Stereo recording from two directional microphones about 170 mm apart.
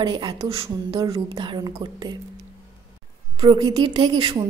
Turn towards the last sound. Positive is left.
turn(degrees=-25)  # may be behind; listen again after turning